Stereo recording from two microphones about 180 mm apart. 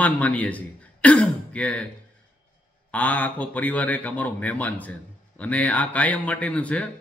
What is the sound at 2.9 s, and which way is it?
A man's voice, 10° left (ahead or behind).